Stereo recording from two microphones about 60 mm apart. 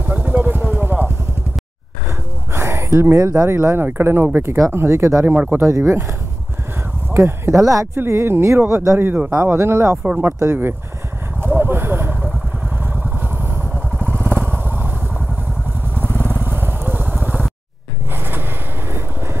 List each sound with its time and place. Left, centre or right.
0.0 s vehicle: right
2.5 s a sound: right
3.2 s speech: right
3.4 s speech: right
4.7 s speech: right
5.3 s speech: right
5.6 s speech: right
7.1 s speech: right
7.5 s speech: right
7.9 s speech: right
11.4 s vehicle: right
16.4 s vehicle: right